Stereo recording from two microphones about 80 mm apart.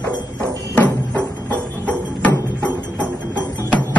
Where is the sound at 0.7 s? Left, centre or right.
Centre.